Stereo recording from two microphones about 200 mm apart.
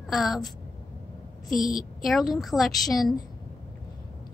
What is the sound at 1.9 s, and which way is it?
Speech, centre (ahead or behind).